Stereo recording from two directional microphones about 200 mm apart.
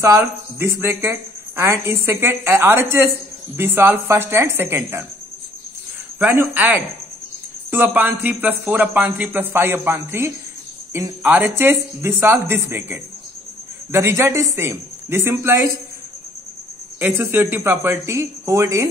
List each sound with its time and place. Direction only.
0.0 s speech: 15° right (ahead or behind)
6.1 s speech: 10° right (ahead or behind)
17.0 s speech: 10° right (ahead or behind)